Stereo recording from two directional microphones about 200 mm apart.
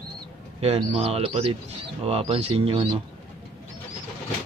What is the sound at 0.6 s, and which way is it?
Speech, 30° right (ahead or behind).